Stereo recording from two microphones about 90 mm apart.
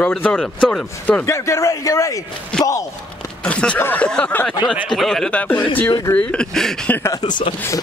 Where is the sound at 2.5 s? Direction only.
10° left (ahead or behind).